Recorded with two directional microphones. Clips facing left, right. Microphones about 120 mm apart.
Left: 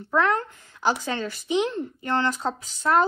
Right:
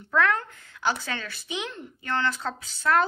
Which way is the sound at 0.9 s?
20° left (ahead or behind).